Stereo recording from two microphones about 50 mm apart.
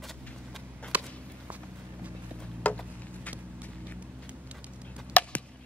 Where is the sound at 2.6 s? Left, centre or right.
Left.